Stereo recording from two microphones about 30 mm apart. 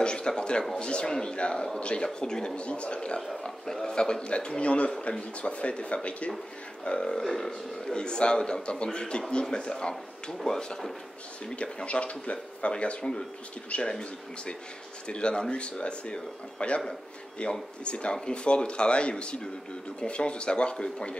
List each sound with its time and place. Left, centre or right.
0.0 s a sound: left
0.4 s speech: left
2.1 s speech: left
2.6 s speech: left
3.4 s a man's voice: centre
3.9 s speech: left
7.0 s speech: left
7.9 s speech: left
11.4 s speech: left
13.8 s speech: left